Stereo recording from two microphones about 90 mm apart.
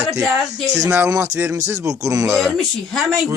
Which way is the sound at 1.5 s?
40° right (ahead or behind).